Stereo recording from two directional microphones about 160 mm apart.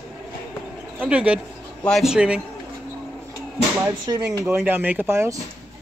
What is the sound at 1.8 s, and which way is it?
Speech, 5° left (ahead or behind).